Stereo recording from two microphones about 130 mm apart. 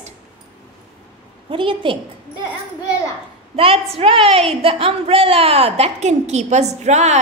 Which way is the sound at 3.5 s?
45° right (ahead or behind).